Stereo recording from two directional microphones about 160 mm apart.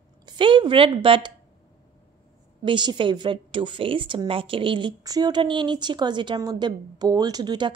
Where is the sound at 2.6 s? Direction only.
30° right (ahead or behind).